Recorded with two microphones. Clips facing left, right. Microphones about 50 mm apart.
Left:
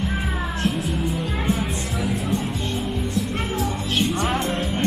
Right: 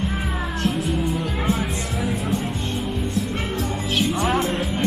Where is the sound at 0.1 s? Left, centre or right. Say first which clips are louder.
Even; centre.